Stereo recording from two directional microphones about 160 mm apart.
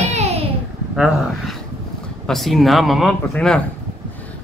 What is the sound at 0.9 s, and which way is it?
Speech, 5° right (ahead or behind).